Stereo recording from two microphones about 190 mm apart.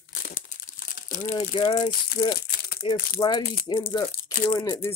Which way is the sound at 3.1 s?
25° left (ahead or behind).